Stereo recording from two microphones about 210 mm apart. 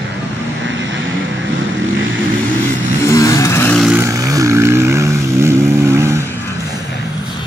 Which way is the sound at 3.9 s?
10° right (ahead or behind).